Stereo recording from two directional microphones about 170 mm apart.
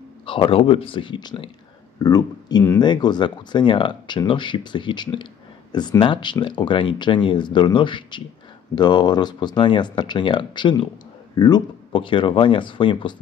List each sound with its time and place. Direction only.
0.2 s speech: 30° left (ahead or behind)